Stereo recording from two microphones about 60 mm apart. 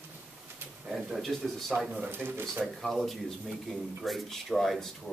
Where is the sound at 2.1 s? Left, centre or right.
Right.